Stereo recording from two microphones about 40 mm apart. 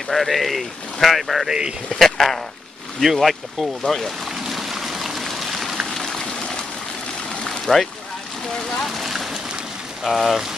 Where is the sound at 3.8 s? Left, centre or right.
Centre.